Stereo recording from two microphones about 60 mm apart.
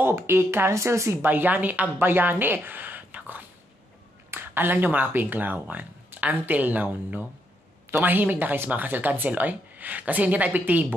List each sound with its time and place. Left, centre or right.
0.0 s speech: right
1.2 s speech: right